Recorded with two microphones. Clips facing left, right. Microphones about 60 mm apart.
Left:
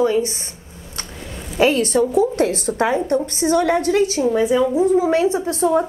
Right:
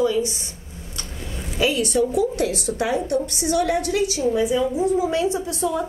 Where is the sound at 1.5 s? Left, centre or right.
Left.